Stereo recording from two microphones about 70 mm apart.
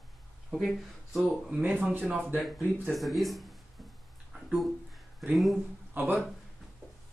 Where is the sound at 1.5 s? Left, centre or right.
Right.